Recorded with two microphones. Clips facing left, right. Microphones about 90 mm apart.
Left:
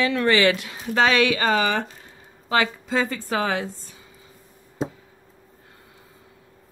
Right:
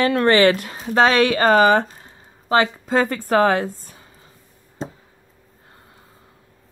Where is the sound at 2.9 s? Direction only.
50° right (ahead or behind).